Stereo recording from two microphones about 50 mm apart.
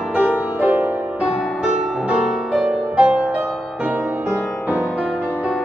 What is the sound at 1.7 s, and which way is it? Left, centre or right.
Music, right.